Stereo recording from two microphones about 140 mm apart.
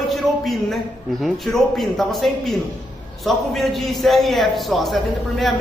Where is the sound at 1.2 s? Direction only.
Centre (ahead or behind).